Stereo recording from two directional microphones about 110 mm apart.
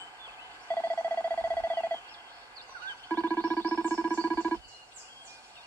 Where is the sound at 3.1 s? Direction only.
20° left (ahead or behind).